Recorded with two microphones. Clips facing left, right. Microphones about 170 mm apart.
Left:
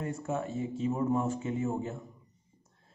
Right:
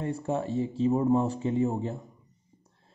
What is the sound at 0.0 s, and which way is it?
Speech, 30° right (ahead or behind).